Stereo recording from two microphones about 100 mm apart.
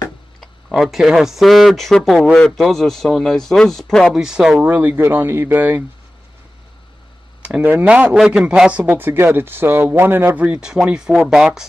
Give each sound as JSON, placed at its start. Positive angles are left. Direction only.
{"t": 0.4, "sound": "speech", "side_deg": 0}
{"t": 4.2, "sound": "a man's voice", "side_deg": -5}
{"t": 7.4, "sound": "a man's voice", "side_deg": -10}